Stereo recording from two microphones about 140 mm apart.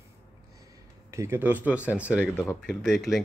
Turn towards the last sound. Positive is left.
turn(degrees=0)  # may be behind; listen again after turning